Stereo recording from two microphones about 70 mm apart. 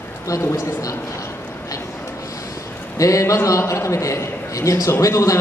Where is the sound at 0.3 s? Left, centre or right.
Left.